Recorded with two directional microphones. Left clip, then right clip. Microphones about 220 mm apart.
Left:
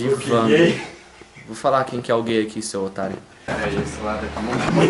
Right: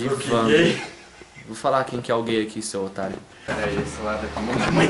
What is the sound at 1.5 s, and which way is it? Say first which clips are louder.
Speech: left 3 dB; centre (ahead or behind).